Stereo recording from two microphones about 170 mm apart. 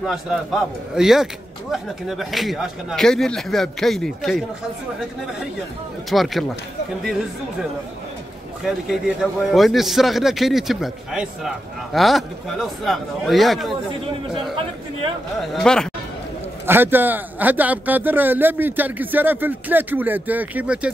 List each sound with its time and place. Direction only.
0.0 s a man's voice: 5° right (ahead or behind)
6.0 s a man's voice: centre (ahead or behind)
8.6 s a man's voice: 5° right (ahead or behind)
14.5 s speech: 30° right (ahead or behind)
15.5 s a man's voice: 5° left (ahead or behind)
16.6 s speech: 10° right (ahead or behind)